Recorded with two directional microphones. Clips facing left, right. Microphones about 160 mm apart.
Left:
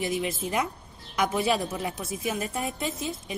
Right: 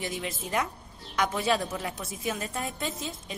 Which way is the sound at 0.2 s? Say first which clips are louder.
Left 3 dB; 15° left (ahead or behind).